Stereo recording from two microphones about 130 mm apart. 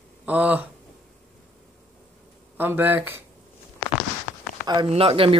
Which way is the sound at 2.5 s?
15° right (ahead or behind).